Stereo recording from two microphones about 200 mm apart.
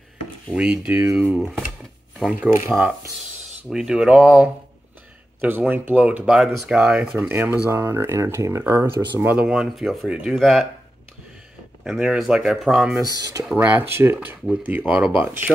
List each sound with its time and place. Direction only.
0.5 s speech: 5° right (ahead or behind)
3.7 s speech: 5° right (ahead or behind)
11.8 s speech: 5° right (ahead or behind)
13.1 s speech: 15° right (ahead or behind)